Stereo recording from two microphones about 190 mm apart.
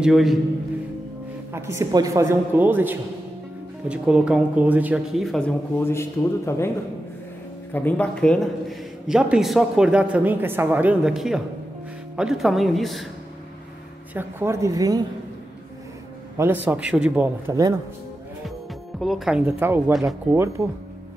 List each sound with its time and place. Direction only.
0.0 s a man's voice: centre (ahead or behind)
1.5 s a man's voice: 15° right (ahead or behind); by 6.7 s 15° left (ahead or behind)
7.7 s a man's voice: 10° left (ahead or behind)
14.1 s speech: 15° right (ahead or behind)
16.3 s speech: 10° right (ahead or behind)
18.9 s a man's voice: centre (ahead or behind)
19.9 s a man's voice: centre (ahead or behind)
20.3 s speech: 15° right (ahead or behind)